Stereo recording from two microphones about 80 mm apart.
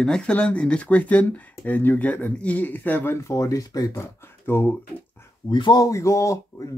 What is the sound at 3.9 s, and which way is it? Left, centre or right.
Speech, left.